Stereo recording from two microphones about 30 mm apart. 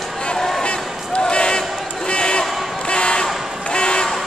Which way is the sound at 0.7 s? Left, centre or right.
Left.